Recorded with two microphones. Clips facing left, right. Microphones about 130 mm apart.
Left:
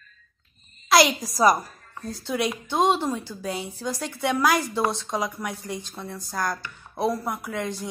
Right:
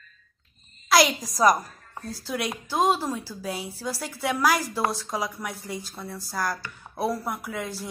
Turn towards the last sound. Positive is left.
turn(degrees=-5)  # may be behind; listen again after turning